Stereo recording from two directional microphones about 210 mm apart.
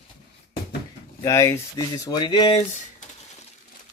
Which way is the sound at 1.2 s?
15° left (ahead or behind).